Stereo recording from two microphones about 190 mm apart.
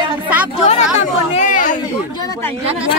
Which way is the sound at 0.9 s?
40° left (ahead or behind).